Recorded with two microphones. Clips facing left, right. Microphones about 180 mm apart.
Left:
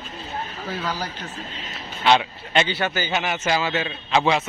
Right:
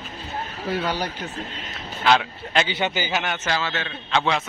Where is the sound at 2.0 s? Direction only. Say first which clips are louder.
Left 1 dB; centre (ahead or behind).